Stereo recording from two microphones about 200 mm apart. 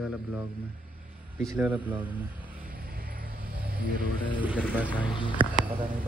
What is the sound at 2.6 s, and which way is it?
Vehicle, 45° right (ahead or behind).